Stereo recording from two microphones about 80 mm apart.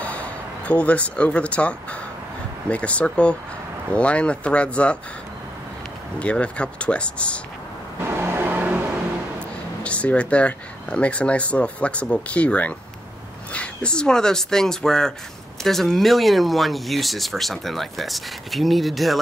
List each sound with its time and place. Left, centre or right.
0.0 s speech: centre
6.1 s speech: centre
8.1 s vehicle: right
9.8 s speech: centre